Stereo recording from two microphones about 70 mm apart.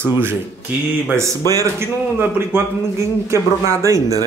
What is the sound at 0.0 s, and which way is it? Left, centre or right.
Speech, right.